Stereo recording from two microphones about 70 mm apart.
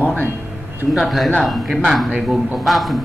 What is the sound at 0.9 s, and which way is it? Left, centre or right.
A man's voice, centre.